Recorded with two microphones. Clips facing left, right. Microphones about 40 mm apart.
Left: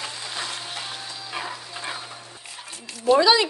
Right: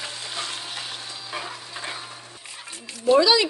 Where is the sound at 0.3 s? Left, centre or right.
Centre.